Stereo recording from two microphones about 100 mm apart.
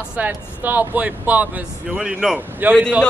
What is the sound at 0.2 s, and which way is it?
Speech, 15° right (ahead or behind).